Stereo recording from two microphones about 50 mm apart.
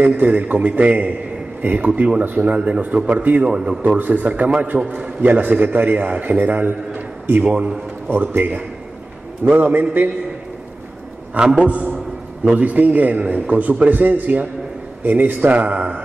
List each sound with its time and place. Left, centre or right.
0.0 s a man's voice: right
3.4 s a man's voice: centre
3.8 s a man's voice: right
5.2 s a man's voice: right
11.5 s a man's voice: right
15.5 s a man's voice: right